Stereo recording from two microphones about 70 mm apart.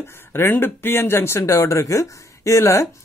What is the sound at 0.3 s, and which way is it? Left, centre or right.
Speech, left.